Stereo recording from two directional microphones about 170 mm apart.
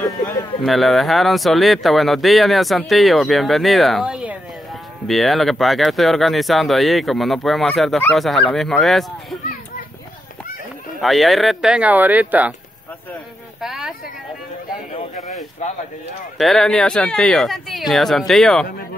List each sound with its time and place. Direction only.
0.0 s speech: 20° left (ahead or behind)
0.7 s speech: centre (ahead or behind)
11.0 s speech: centre (ahead or behind)
13.6 s a sound: centre (ahead or behind)
15.6 s a sound: 45° left (ahead or behind)
16.3 s speech: centre (ahead or behind)